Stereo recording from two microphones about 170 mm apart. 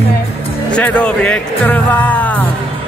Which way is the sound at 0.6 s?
5° left (ahead or behind).